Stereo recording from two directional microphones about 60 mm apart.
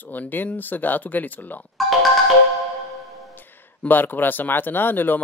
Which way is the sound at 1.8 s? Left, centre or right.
Centre.